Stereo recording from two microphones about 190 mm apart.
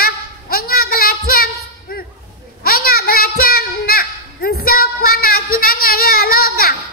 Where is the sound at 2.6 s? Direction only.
50° left (ahead or behind).